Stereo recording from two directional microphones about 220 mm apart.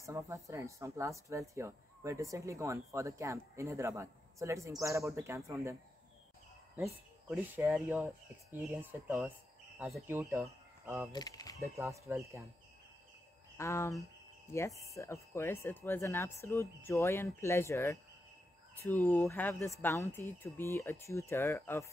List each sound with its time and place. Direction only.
0.0 s speech: 15° right (ahead or behind)
6.8 s speech: 10° right (ahead or behind)
10.0 s speech: 10° right (ahead or behind)
11.1 s speech: 20° left (ahead or behind)
11.7 s speech: 15° right (ahead or behind)
13.6 s speech: 10° left (ahead or behind)